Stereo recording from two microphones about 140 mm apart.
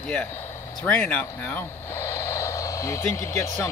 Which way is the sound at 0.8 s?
10° left (ahead or behind).